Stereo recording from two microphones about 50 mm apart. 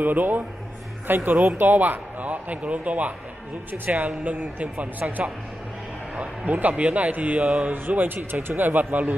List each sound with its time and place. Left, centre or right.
0.0 s speech: right
6.1 s a man's voice: right